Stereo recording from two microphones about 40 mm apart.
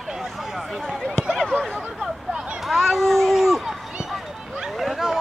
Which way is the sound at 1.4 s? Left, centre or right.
Centre.